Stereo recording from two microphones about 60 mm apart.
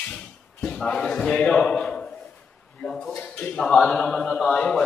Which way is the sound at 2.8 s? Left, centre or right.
Centre.